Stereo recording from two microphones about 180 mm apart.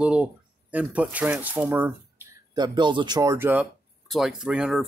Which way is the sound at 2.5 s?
25° right (ahead or behind).